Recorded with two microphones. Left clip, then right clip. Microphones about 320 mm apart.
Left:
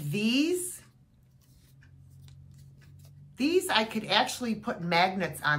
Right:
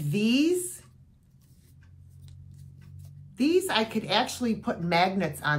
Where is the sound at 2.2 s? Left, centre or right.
Centre.